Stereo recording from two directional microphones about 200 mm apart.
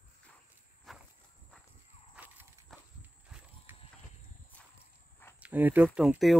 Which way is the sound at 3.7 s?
10° right (ahead or behind).